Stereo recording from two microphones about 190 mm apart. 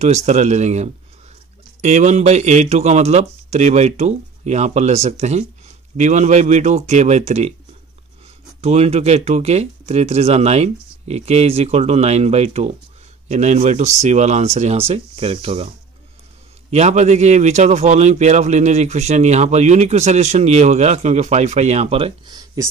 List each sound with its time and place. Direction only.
0.0 s a man's voice: 35° right (ahead or behind)
8.5 s a man's voice: 35° right (ahead or behind)
16.7 s a man's voice: 35° right (ahead or behind); by 22.7 s 20° right (ahead or behind)